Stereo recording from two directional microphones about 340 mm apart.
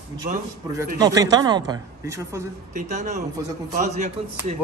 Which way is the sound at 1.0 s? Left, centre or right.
Centre.